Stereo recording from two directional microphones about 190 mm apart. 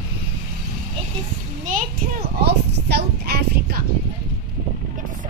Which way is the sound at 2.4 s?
60° right (ahead or behind).